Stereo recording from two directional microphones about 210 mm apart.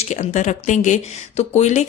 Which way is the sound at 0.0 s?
30° left (ahead or behind).